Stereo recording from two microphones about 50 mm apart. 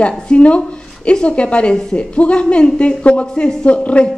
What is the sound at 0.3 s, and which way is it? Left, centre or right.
A woman's voice, left.